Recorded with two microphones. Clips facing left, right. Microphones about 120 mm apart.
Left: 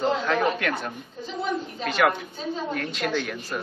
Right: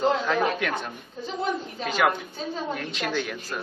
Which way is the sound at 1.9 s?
5° right (ahead or behind).